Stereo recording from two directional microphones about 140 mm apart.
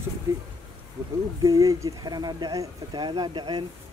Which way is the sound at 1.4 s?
25° right (ahead or behind).